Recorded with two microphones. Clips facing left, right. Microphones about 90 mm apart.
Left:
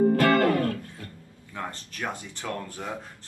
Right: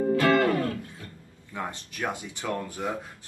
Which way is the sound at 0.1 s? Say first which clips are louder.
Left 1 dB; 50° left (ahead or behind).